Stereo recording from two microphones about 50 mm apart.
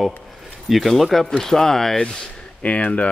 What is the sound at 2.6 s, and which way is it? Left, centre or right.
Speech, left.